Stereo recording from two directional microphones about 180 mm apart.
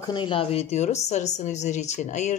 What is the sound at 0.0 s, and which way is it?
A woman's voice, 25° left (ahead or behind).